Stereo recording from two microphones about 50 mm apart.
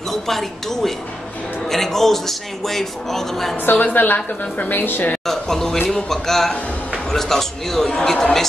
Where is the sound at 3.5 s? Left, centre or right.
Left.